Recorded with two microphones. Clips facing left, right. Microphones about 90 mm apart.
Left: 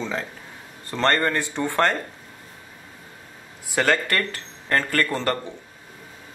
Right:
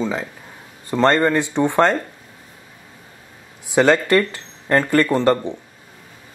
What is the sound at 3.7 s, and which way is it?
Speech, 20° right (ahead or behind).